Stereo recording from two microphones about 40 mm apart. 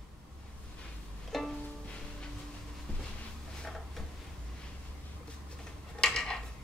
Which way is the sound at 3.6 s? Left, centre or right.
Centre.